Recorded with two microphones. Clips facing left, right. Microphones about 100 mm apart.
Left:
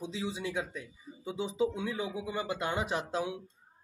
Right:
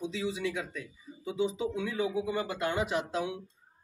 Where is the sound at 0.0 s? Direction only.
30° left (ahead or behind).